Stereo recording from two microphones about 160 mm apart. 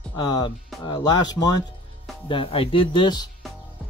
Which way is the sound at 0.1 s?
25° left (ahead or behind).